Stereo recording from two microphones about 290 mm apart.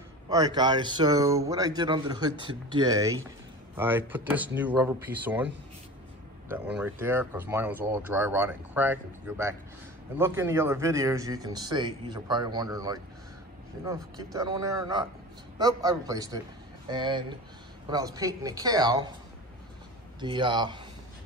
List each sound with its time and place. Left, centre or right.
0.3 s speech: centre
6.5 s speech: centre
20.2 s speech: centre